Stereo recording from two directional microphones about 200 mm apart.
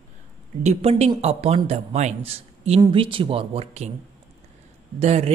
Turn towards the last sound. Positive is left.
turn(degrees=-30)  # may be behind; listen again after turning